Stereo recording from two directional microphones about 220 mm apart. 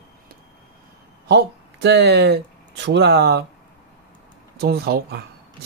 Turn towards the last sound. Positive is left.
turn(degrees=-45)  # may be behind; listen again after turning